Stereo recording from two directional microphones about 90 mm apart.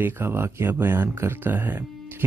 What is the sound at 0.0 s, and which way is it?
Speech, 25° right (ahead or behind).